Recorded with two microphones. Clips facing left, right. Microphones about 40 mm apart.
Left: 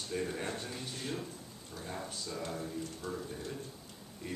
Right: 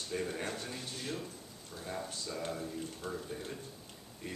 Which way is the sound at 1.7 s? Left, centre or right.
Centre.